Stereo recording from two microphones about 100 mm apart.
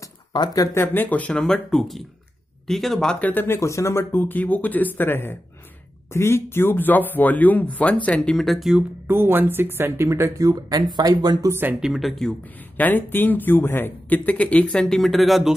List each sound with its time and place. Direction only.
0.3 s speech: 45° left (ahead or behind)
0.7 s speech: 20° left (ahead or behind); by 8.7 s centre (ahead or behind)
9.0 s speech: 25° right (ahead or behind); by 11.3 s 45° right (ahead or behind)
11.4 s speech: 25° right (ahead or behind)
11.8 s speech: centre (ahead or behind)
12.7 s speech: 15° left (ahead or behind); by 15.5 s centre (ahead or behind)